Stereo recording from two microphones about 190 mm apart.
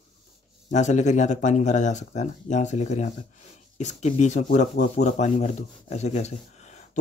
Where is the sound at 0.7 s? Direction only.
40° left (ahead or behind).